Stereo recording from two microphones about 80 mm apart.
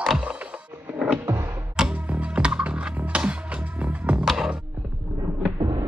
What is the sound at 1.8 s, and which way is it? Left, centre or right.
Music, centre.